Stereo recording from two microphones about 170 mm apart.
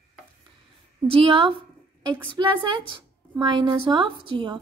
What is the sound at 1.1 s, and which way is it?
A woman's voice, 30° right (ahead or behind).